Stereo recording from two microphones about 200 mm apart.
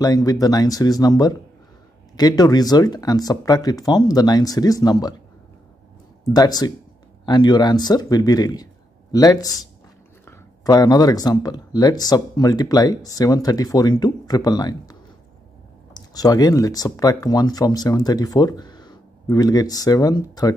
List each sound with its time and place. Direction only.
0.0 s speech: 20° left (ahead or behind)
6.2 s speech: 20° left (ahead or behind)